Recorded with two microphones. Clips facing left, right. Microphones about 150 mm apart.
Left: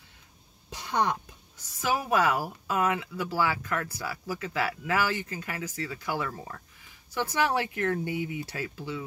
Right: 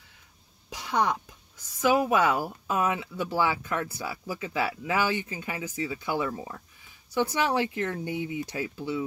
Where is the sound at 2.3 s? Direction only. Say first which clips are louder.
Right 1 dB; 20° right (ahead or behind).